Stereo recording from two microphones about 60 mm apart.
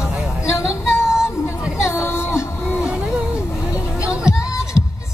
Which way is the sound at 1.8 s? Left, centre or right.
Left.